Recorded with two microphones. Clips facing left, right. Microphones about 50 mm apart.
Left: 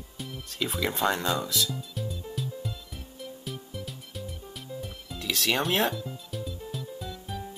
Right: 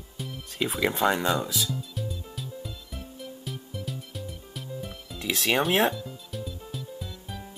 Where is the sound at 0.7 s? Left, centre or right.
Centre.